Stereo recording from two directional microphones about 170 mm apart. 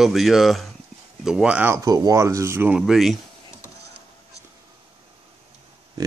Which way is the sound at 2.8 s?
Centre (ahead or behind).